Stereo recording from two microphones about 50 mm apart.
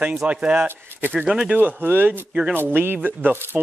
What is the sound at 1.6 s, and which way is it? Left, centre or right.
Speech, right.